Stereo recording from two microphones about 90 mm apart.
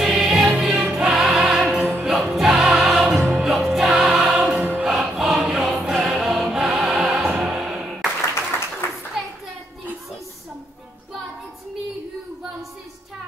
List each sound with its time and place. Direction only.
0.0 s music: 5° right (ahead or behind)
8.8 s clapping: 25° left (ahead or behind)